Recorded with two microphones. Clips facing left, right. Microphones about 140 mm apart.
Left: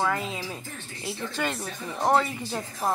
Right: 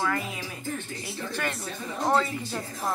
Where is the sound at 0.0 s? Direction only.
20° left (ahead or behind).